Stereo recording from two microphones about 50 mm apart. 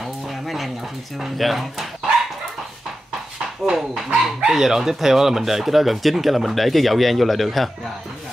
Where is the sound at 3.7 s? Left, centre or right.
Centre.